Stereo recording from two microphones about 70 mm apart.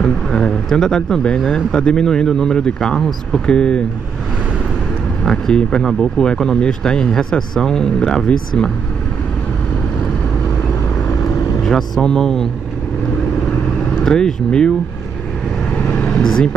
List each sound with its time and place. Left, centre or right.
0.0 s speech: centre
5.2 s speech: centre
11.6 s speech: centre
14.0 s speech: centre
15.7 s vehicle: left
16.2 s speech: centre